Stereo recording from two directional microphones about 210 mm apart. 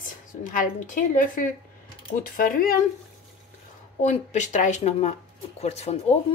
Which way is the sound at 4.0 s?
35° left (ahead or behind).